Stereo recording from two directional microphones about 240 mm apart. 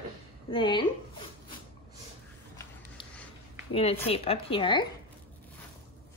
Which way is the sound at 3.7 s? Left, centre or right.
Left.